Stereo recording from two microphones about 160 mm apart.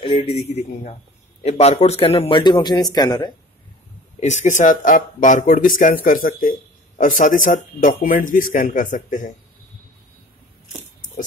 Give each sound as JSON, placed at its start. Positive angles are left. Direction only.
{"t": 0.0, "sound": "a man's voice", "side_deg": 35}
{"t": 4.2, "sound": "speech", "side_deg": 50}